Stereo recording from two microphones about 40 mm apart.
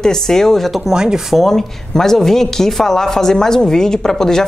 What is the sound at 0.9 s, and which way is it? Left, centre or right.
Speech, centre.